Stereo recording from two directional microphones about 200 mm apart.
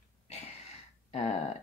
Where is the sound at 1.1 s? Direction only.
35° left (ahead or behind).